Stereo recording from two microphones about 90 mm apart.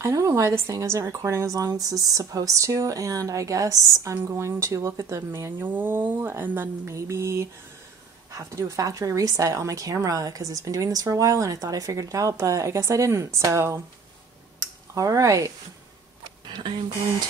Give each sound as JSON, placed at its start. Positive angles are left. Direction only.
{"t": 0.0, "sound": "a woman's voice", "side_deg": -35}
{"t": 5.6, "sound": "a woman's voice", "side_deg": -20}
{"t": 6.9, "sound": "a woman's voice", "side_deg": -35}
{"t": 14.6, "sound": "a sound", "side_deg": -40}
{"t": 16.4, "sound": "speech", "side_deg": -55}